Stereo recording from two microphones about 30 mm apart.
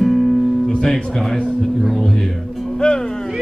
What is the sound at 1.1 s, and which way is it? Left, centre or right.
Speech, centre.